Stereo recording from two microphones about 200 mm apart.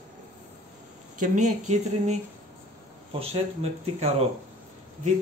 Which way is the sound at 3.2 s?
30° right (ahead or behind).